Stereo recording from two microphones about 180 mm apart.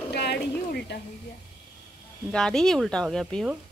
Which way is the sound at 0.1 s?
65° left (ahead or behind).